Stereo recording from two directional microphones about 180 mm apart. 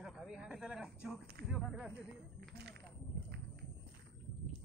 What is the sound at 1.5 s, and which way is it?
Speech, 5° right (ahead or behind).